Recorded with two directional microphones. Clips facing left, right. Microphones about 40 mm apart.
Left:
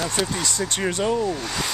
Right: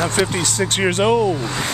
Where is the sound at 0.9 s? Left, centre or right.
Right.